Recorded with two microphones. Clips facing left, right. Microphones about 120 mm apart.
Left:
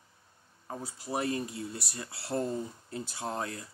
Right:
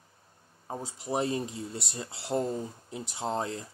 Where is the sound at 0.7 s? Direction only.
25° right (ahead or behind).